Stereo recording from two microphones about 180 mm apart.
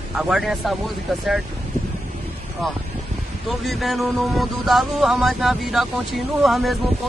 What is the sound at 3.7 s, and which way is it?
Speech, centre (ahead or behind).